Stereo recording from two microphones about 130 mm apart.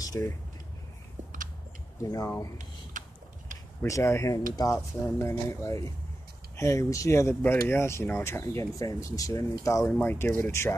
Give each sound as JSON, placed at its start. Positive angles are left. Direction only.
{"t": 0.0, "sound": "speech", "side_deg": 25}
{"t": 2.0, "sound": "speech", "side_deg": 25}
{"t": 2.9, "sound": "a sound", "side_deg": -80}
{"t": 3.8, "sound": "speech", "side_deg": 20}